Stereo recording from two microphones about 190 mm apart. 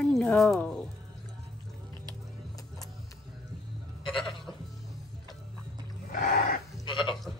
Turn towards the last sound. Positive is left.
turn(degrees=0)  # may be behind; listen again after turning